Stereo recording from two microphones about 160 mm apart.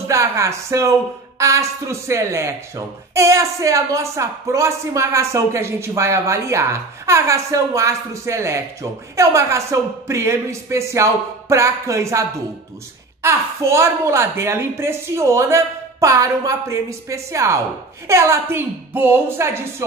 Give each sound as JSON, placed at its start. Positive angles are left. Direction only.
{"t": 0.1, "sound": "a woman's voice", "side_deg": -20}